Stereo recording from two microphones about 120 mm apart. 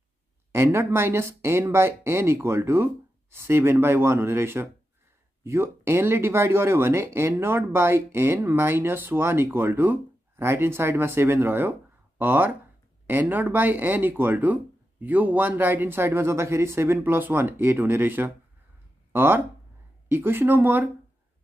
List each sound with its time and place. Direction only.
0.5 s speech: 20° right (ahead or behind)